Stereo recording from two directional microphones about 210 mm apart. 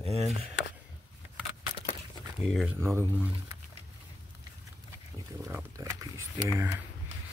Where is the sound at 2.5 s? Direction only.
Centre (ahead or behind).